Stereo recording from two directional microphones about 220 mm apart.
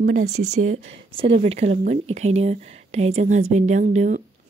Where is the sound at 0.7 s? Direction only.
25° right (ahead or behind).